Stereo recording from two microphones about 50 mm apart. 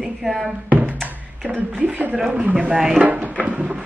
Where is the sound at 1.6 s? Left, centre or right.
Right.